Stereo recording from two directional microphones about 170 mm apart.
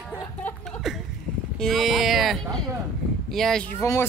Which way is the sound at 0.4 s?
10° left (ahead or behind).